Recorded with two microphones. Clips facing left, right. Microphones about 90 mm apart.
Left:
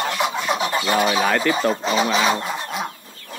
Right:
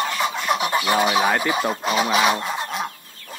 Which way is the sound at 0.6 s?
15° right (ahead or behind).